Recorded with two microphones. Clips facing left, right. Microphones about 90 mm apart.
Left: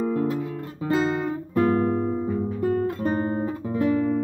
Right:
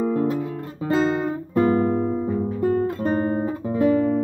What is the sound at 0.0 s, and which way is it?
Guitar, 15° right (ahead or behind).